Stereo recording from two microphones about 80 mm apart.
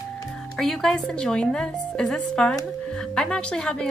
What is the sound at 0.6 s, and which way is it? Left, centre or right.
A woman's voice, centre.